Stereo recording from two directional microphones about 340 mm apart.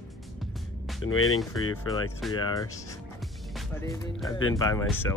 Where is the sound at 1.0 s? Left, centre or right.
Left.